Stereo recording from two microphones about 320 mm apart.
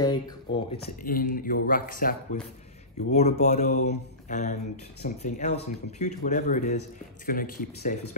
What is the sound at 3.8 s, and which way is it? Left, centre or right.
Mantra, left.